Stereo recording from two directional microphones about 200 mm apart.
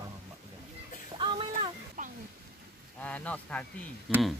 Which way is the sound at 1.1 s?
25° right (ahead or behind).